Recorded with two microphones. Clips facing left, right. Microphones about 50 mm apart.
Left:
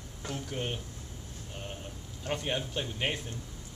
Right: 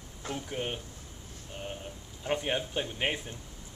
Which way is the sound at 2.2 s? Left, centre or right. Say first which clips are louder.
Right 2 dB; centre.